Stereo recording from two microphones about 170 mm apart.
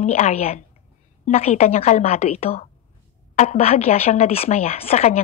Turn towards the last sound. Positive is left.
turn(degrees=40)  # may be behind; listen again after turning